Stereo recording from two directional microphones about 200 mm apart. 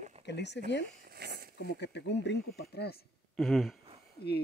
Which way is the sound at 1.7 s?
55° left (ahead or behind).